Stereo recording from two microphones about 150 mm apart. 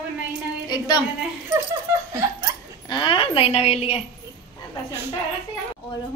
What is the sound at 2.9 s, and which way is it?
A woman's voice, 35° left (ahead or behind).